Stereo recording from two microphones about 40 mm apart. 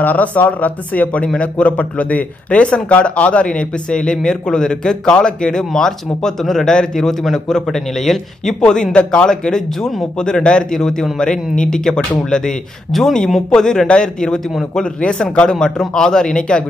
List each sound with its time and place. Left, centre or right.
0.0 s a man's voice: left; by 8.5 s centre
8.5 s a man's voice: centre
9.8 s speech: centre
10.1 s a man's voice: left